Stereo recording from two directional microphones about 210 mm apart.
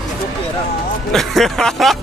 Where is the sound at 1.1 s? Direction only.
Centre (ahead or behind).